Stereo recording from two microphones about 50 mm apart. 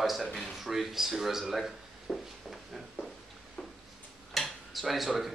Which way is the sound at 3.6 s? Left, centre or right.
Centre.